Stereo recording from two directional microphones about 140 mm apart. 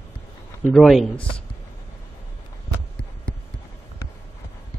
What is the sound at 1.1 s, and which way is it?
Speech, 40° left (ahead or behind).